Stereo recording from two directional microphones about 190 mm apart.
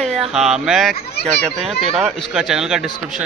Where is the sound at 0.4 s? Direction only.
Centre (ahead or behind).